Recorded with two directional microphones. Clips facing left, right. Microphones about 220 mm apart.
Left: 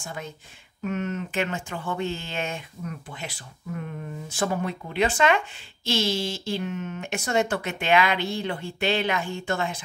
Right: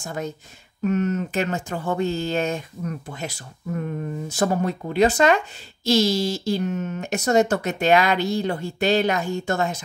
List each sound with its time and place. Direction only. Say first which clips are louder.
0.0 s speech: right 7 dB; 45° right (ahead or behind)